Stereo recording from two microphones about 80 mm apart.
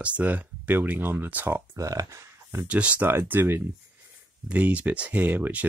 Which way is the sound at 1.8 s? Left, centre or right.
Right.